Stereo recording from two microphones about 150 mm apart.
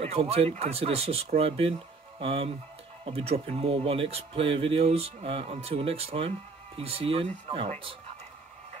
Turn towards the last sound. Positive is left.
turn(degrees=-35)  # may be behind; listen again after turning